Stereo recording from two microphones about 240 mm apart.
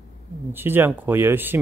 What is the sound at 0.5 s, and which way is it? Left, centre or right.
Speech, centre.